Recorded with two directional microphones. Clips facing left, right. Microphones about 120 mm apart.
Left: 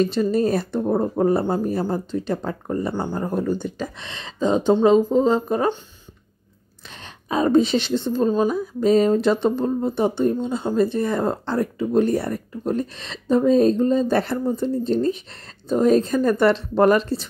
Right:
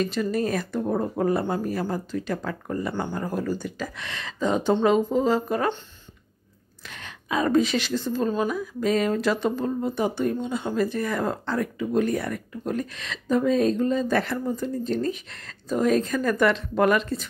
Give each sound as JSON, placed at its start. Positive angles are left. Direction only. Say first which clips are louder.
{"t": 0.0, "sound": "a woman's voice", "louder": "left 5 dB", "side_deg": 30}
{"t": 3.3, "sound": "a woman's voice", "louder": "left 4 dB", "side_deg": 25}
{"t": 7.2, "sound": "a woman's voice", "louder": "left 4 dB", "side_deg": 30}